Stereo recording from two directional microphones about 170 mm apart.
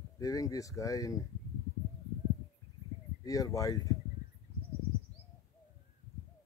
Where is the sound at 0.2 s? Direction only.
20° left (ahead or behind).